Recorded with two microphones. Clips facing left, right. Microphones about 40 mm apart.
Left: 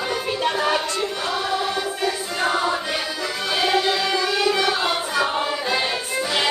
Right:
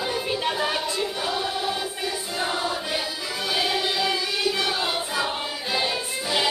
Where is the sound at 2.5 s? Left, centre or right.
Left.